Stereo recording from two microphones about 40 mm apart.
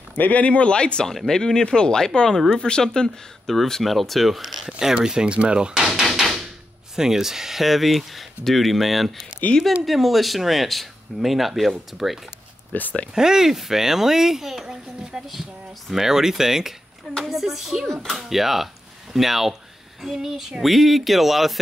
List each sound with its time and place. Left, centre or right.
0.2 s speech: left
1.0 s speech: centre
3.8 s speech: centre
5.0 s speech: right
6.0 s door: centre
7.0 s speech: centre
12.7 s speech: left
13.1 s speech: centre